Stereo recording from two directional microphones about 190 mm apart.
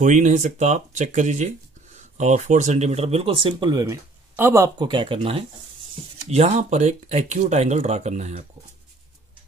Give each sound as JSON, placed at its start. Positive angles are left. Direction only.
{"t": 0.0, "sound": "speech", "side_deg": -40}